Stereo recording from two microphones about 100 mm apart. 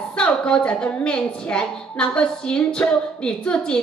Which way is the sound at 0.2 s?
10° left (ahead or behind).